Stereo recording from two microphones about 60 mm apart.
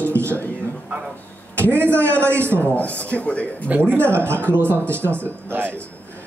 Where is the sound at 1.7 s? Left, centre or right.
Right.